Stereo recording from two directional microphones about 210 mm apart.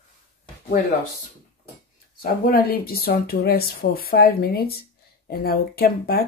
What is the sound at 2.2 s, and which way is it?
Speech, 45° left (ahead or behind).